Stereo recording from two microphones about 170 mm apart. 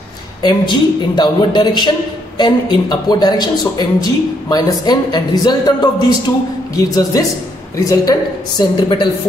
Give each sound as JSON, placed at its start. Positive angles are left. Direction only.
{"t": 0.4, "sound": "speech", "side_deg": 25}